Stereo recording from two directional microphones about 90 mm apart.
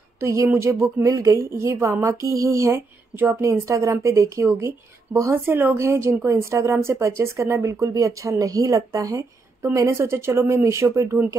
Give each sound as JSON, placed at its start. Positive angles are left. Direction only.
{"t": 0.2, "sound": "a woman's voice", "side_deg": -35}
{"t": 5.3, "sound": "a woman's voice", "side_deg": -25}